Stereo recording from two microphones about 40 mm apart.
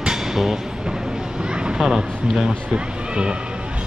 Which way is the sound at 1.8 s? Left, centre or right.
Centre.